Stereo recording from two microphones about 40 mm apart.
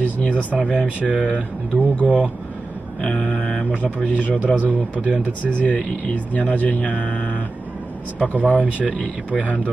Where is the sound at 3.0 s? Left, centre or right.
Left.